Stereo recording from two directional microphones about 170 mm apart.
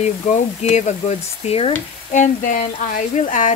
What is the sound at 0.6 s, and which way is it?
Speech, 40° left (ahead or behind).